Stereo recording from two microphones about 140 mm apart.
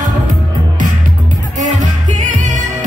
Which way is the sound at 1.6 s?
60° right (ahead or behind).